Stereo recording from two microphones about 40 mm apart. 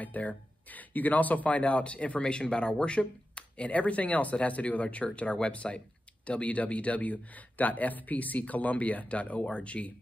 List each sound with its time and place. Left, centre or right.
0.0 s speech: left